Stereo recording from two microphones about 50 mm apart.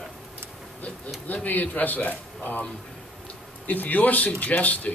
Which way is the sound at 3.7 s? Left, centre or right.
Left.